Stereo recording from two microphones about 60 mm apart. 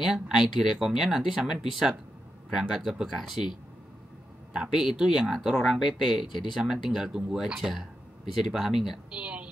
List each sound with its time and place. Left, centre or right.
0.0 s speech: centre
4.6 s speech: centre
9.1 s a woman's voice: centre